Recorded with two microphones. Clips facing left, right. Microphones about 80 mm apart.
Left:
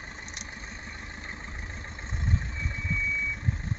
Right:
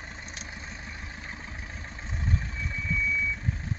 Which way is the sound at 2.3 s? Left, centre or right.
Left.